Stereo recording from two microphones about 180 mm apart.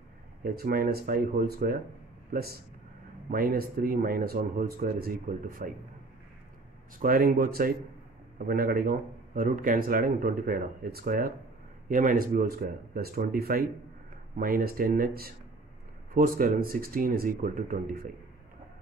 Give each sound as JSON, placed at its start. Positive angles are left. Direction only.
{"t": 0.4, "sound": "speech", "side_deg": -55}
{"t": 7.0, "sound": "speech", "side_deg": -50}